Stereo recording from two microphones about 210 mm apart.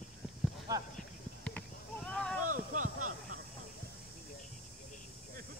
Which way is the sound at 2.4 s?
40° right (ahead or behind).